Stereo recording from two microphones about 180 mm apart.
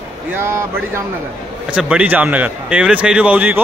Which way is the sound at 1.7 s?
5° right (ahead or behind).